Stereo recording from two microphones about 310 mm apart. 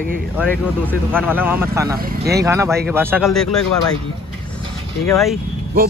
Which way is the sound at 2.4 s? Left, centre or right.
Centre.